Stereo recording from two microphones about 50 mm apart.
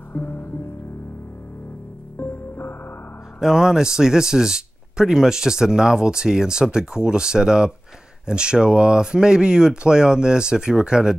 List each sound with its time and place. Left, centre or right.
0.1 s music: left
2.1 s music: left
3.3 s speech: centre